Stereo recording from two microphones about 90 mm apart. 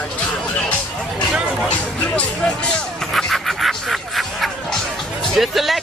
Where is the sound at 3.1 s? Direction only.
Centre (ahead or behind).